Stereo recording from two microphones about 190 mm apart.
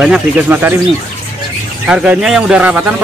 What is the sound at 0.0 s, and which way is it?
Speech, 5° right (ahead or behind).